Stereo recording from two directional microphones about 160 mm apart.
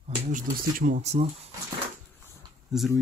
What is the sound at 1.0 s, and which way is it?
Speech, 45° right (ahead or behind).